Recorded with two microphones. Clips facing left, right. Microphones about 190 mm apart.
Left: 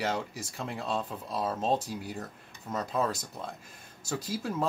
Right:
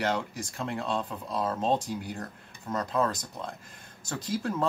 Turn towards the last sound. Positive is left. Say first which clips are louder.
# right 2 dB
turn(degrees=5)  # may be behind; listen again after turning